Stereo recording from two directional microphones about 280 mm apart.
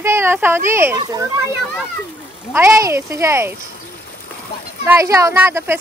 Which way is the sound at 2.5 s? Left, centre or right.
Centre.